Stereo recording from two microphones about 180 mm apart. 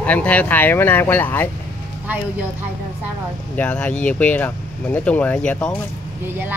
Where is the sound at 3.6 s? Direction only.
5° left (ahead or behind).